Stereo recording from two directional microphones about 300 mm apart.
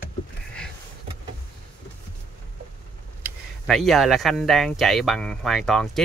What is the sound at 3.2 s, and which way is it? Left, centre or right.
Speech, centre.